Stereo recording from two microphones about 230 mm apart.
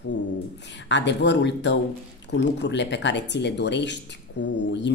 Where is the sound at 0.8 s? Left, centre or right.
Left.